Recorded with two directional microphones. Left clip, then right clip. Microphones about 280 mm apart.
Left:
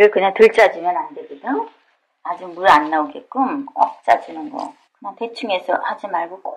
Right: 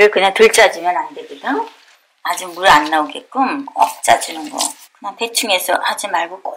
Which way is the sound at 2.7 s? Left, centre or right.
Centre.